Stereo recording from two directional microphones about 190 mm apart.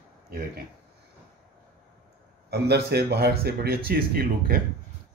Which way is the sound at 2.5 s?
60° right (ahead or behind).